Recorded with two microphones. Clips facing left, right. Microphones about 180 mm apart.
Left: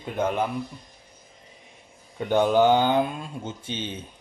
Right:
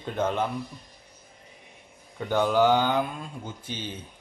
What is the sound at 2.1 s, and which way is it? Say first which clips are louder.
Speech: left 3 dB; 20° left (ahead or behind).